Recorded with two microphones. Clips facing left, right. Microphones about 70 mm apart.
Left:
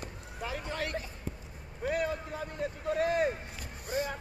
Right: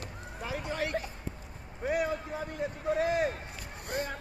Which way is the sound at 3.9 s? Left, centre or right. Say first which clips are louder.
Left 1 dB; right.